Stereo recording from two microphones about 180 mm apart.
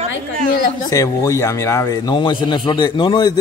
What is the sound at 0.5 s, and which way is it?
Speech, 50° left (ahead or behind).